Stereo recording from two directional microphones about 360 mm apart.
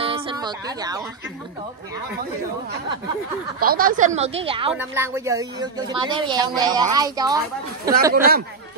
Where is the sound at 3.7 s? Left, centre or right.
Right.